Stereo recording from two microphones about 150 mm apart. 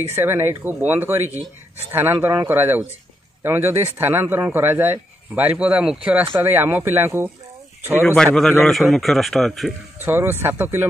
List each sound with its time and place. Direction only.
0.1 s speech: 15° right (ahead or behind)
8.0 s a man's voice: 5° left (ahead or behind)
9.9 s speech: 15° right (ahead or behind)